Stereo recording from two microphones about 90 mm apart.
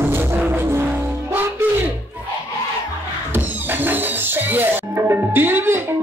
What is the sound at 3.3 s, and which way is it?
Music, 20° right (ahead or behind).